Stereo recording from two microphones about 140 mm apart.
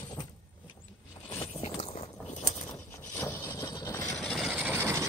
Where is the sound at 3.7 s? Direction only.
20° left (ahead or behind).